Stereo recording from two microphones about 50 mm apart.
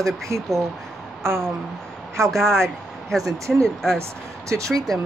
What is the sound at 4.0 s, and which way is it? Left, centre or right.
Speech, right.